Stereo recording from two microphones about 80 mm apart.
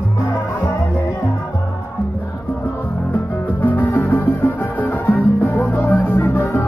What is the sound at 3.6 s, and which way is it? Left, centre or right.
Music, left.